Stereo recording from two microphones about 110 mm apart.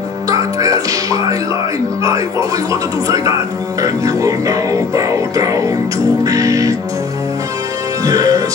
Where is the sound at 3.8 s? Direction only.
30° right (ahead or behind).